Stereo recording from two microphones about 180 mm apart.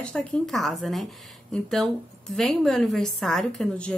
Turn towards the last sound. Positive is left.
turn(degrees=5)  # may be behind; listen again after turning